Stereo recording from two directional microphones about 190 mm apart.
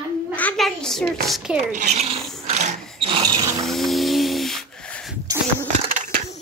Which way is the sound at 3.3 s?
20° right (ahead or behind).